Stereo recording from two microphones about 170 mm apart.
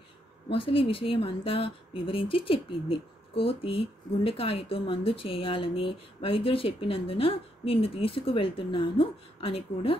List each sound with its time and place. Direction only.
0.5 s speech: 30° left (ahead or behind)